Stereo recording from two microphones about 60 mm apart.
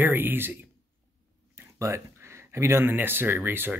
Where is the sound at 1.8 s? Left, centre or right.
Right.